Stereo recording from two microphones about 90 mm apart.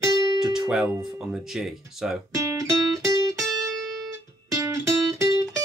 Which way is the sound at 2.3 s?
35° right (ahead or behind).